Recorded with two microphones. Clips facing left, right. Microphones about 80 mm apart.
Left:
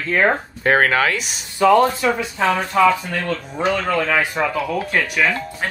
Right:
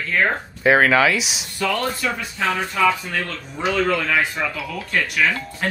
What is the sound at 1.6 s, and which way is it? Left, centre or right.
Speech, left.